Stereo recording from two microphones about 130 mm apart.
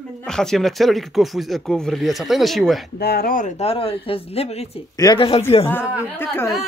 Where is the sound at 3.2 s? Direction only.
90° left.